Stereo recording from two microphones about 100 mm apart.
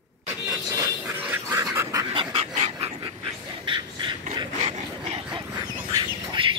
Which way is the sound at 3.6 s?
50° right (ahead or behind).